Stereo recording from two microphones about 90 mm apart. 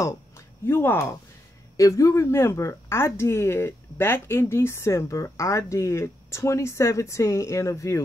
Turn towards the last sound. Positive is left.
turn(degrees=35)  # may be behind; listen again after turning